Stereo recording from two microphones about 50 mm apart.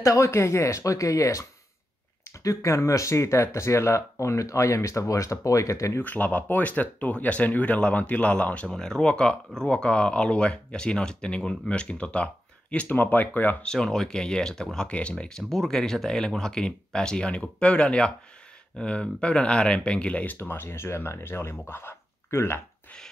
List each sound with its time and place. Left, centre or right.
0.0 s speech: left
6.0 s speech: left
8.6 s speech: centre; by 13.0 s left
13.0 s speech: left
13.6 s speech: centre
14.9 s speech: left
20.3 s speech: left